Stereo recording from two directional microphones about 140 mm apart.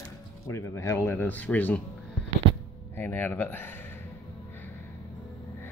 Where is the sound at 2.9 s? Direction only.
15° left (ahead or behind).